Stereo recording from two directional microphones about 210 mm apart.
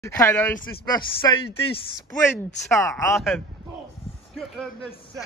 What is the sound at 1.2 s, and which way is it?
Speech, 25° left (ahead or behind).